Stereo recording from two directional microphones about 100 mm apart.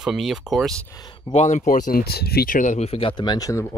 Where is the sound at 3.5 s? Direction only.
25° left (ahead or behind).